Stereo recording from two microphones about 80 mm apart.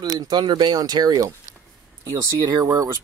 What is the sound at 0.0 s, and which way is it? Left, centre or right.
Speech, right.